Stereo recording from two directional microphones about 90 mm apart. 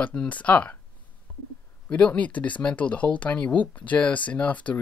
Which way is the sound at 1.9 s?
15° left (ahead or behind).